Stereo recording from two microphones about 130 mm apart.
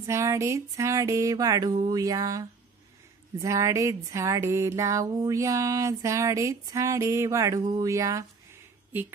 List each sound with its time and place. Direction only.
0.0 s speech: 20° right (ahead or behind)